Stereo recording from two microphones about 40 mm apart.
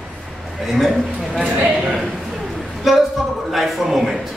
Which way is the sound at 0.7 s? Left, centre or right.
Centre.